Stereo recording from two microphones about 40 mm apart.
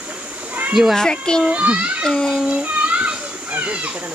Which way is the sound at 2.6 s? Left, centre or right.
Right.